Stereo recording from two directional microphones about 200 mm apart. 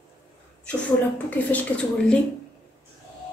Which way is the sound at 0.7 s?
5° left (ahead or behind).